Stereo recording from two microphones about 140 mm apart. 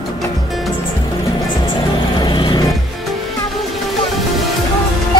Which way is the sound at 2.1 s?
30° left (ahead or behind).